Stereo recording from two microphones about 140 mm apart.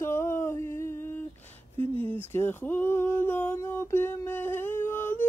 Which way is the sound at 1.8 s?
40° right (ahead or behind).